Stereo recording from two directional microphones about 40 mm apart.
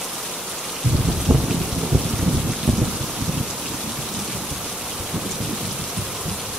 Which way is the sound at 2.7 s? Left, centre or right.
Centre.